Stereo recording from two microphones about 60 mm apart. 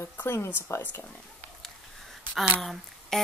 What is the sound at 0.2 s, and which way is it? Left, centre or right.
Speech, left.